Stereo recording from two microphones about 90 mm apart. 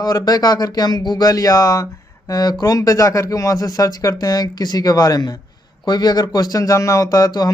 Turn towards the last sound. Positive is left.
turn(degrees=45)  # may be behind; listen again after turning